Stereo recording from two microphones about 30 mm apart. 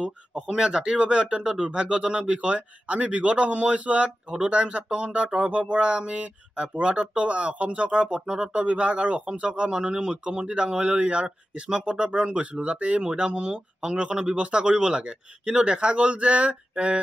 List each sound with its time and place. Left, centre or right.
0.5 s speech: right
8.3 s speech: right
8.6 s speech: right
12.3 s speech: right